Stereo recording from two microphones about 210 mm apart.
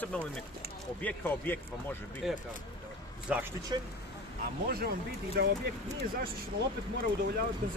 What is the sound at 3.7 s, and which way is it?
Speech, 20° right (ahead or behind).